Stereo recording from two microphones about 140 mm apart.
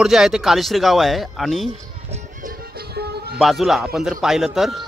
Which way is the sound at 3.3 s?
Centre (ahead or behind).